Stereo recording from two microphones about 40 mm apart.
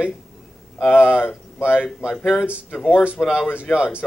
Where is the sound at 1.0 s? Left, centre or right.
Left.